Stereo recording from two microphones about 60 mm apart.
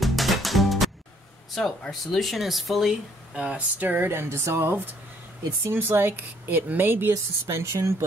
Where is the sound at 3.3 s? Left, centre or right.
Right.